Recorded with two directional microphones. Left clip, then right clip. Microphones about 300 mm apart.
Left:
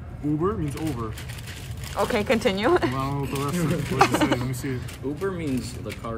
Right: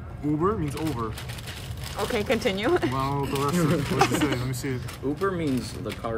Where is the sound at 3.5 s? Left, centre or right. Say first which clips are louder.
Right 2 dB; right.